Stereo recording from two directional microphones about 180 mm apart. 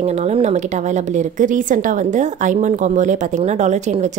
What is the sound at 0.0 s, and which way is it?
A woman's voice, 35° right (ahead or behind).